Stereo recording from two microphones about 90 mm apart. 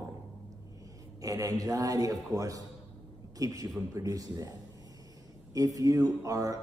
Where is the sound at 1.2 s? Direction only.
40° right (ahead or behind).